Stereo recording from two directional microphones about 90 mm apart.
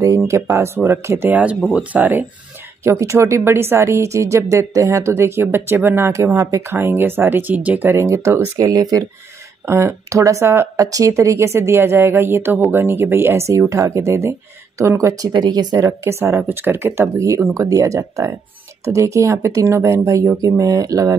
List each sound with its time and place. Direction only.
0.0 s speech: 35° right (ahead or behind)
1.3 s speech: 15° right (ahead or behind)
2.8 s speech: 30° right (ahead or behind)
7.9 s speech: 30° right (ahead or behind)
10.9 s speech: 40° right (ahead or behind)
16.0 s speech: 30° right (ahead or behind)